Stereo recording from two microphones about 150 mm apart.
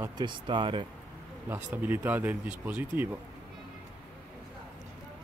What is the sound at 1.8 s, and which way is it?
Speech, 10° right (ahead or behind).